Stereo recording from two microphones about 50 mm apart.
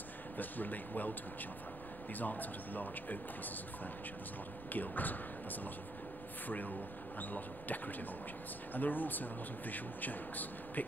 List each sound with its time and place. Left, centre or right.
0.4 s speech: left
2.1 s speech: left
4.7 s speech: left